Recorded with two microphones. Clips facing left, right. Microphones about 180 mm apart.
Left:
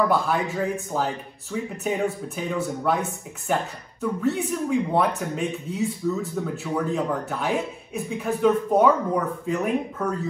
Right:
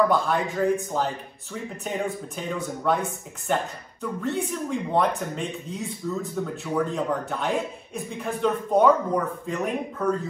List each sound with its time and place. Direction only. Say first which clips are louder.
0.1 s speech: even; 5° left (ahead or behind)